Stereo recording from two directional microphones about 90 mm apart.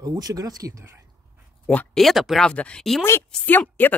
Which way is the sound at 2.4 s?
10° left (ahead or behind).